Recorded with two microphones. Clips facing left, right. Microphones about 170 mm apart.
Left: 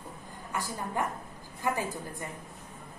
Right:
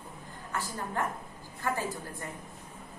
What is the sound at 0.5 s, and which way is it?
A woman's voice, 15° left (ahead or behind).